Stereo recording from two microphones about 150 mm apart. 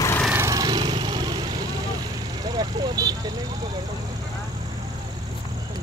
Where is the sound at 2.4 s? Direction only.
25° right (ahead or behind).